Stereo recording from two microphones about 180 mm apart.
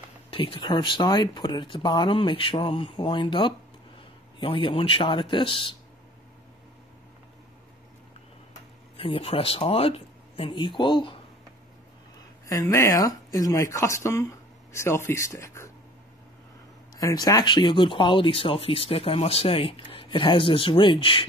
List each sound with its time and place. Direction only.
0.3 s speech: 30° left (ahead or behind)
8.9 s speech: 30° left (ahead or behind)
12.4 s a man's voice: 15° left (ahead or behind)
16.9 s speech: 20° left (ahead or behind)